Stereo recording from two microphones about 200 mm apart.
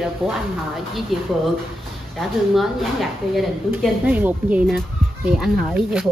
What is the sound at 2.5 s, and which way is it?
A woman's voice, centre (ahead or behind).